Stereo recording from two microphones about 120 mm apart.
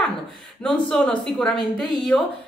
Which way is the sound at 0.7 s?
5° left (ahead or behind).